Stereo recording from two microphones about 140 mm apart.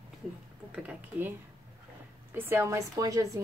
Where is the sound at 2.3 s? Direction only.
20° right (ahead or behind).